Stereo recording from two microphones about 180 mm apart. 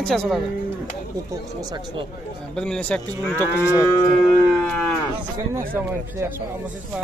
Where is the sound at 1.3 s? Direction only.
20° right (ahead or behind).